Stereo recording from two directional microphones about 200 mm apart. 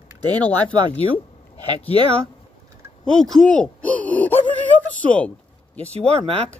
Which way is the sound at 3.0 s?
5° left (ahead or behind).